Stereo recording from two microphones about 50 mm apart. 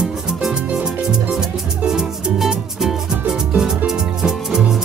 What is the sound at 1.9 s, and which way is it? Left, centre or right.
Music, centre.